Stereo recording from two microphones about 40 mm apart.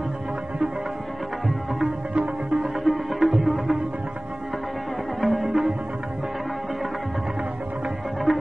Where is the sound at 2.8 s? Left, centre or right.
Centre.